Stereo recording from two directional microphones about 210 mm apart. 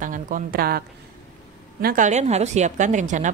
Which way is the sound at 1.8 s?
40° right (ahead or behind).